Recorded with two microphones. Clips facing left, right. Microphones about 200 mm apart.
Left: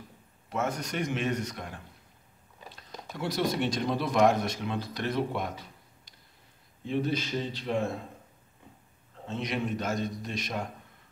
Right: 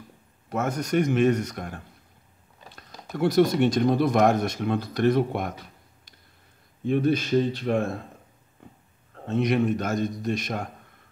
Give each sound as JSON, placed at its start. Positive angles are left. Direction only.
{"t": 0.5, "sound": "speech", "side_deg": -45}
{"t": 6.9, "sound": "speech", "side_deg": -55}
{"t": 9.2, "sound": "speech", "side_deg": -55}